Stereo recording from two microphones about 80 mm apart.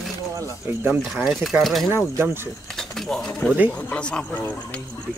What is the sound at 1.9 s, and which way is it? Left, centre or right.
Speech, right.